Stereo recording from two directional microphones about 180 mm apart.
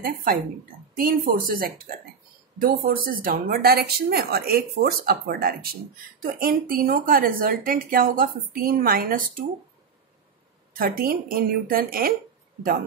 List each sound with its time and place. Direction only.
0.0 s speech: 50° right (ahead or behind)
10.7 s speech: 55° right (ahead or behind)